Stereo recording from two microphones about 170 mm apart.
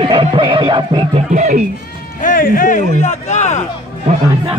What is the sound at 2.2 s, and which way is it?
Speech, 55° left (ahead or behind).